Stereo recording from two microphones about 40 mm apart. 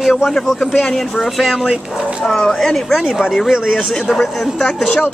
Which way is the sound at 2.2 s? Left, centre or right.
Centre.